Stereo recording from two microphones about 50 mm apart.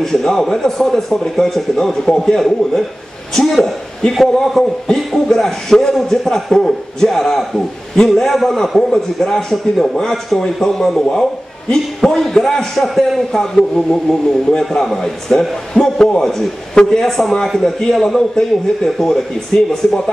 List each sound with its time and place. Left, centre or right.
0.0 s a man's voice: centre